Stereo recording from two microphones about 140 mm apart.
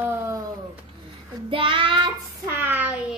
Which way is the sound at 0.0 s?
15° right (ahead or behind).